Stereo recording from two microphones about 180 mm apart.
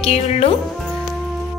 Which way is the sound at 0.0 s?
35° left (ahead or behind).